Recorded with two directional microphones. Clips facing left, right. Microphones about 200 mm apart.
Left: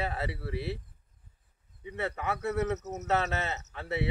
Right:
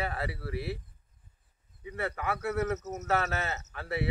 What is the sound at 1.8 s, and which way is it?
Speech, 20° left (ahead or behind).